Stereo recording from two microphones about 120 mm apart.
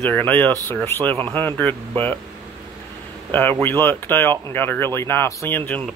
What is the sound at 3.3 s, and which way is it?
Speech, 15° left (ahead or behind).